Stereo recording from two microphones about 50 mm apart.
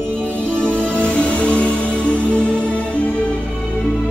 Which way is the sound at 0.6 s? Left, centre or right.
Centre.